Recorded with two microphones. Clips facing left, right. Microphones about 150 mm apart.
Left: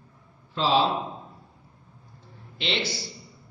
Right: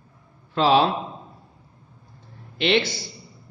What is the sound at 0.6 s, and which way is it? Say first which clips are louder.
Speech: right 5 dB; 60° right (ahead or behind).